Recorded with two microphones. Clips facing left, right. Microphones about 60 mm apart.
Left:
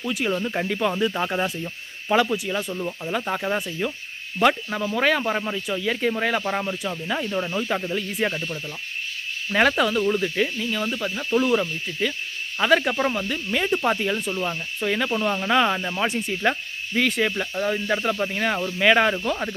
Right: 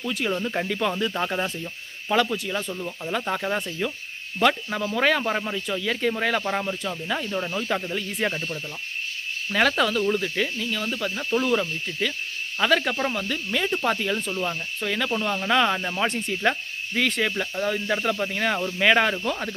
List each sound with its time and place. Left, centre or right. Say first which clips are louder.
0.0 s speech: left 2 dB; centre
9.5 s speech: left 2 dB; centre